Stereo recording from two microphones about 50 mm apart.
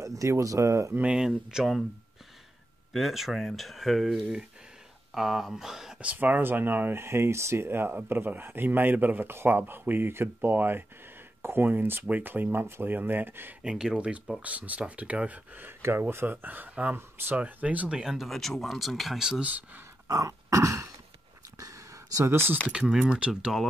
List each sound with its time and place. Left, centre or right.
0.0 s speech: right
1.2 s speech: centre
2.9 s speech: centre
5.9 s speech: right
12.6 s speech: right
12.9 s speech: right
13.6 s speech: centre; by 15.7 s right
15.8 s speech: right
17.8 s speech: centre
18.3 s speech: centre
19.4 s speech: right
20.1 s throat clearing: right
21.7 s a sound: right
22.7 s speech: centre